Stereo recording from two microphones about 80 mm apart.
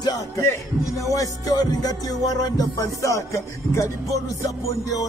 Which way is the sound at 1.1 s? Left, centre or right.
Left.